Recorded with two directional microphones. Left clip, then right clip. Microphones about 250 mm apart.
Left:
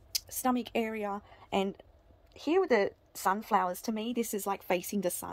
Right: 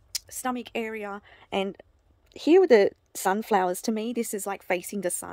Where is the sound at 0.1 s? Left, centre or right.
Centre.